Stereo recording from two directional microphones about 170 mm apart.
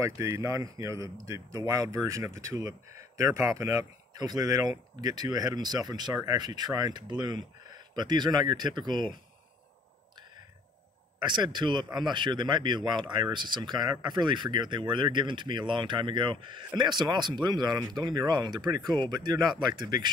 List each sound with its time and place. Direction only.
0.0 s speech: 20° right (ahead or behind)
11.2 s speech: 25° right (ahead or behind)